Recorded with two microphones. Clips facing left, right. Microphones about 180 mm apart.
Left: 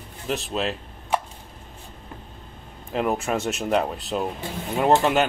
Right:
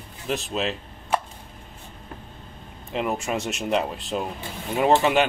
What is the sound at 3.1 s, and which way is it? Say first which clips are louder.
Speech: left 2 dB; centre (ahead or behind).